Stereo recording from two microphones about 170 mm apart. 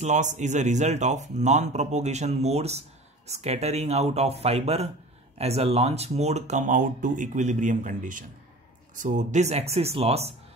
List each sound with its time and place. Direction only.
0.0 s speech: 45° right (ahead or behind)